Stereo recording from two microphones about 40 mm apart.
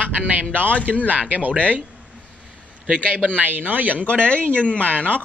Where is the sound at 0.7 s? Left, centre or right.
Left.